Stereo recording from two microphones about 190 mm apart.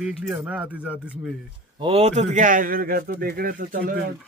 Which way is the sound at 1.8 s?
30° right (ahead or behind).